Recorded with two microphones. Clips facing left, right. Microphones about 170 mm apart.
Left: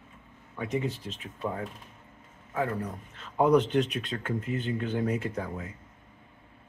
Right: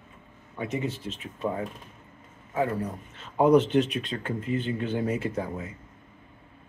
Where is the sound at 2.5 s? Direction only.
15° right (ahead or behind).